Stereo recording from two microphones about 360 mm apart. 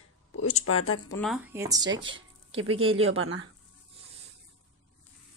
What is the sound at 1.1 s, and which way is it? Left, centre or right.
Speech, centre.